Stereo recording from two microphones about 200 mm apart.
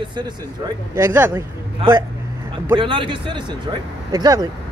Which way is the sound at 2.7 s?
25° right (ahead or behind).